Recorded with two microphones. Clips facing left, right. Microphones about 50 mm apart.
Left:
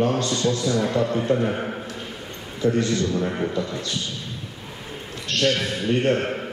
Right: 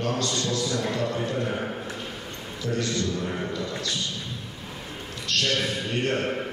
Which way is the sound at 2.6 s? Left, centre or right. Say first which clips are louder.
Left 6 dB; left.